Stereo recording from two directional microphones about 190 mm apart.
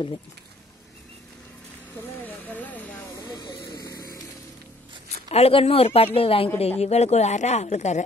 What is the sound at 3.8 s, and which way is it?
Music, 20° left (ahead or behind).